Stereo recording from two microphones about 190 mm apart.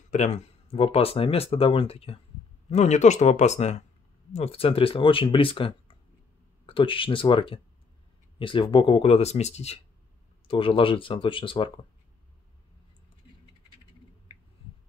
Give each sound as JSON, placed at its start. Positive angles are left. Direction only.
{"t": 0.1, "sound": "speech", "side_deg": 35}